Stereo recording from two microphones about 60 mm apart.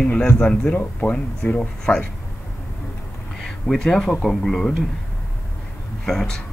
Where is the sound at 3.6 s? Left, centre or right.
Centre.